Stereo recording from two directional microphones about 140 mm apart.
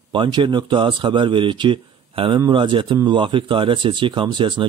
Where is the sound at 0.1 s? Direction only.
35° right (ahead or behind).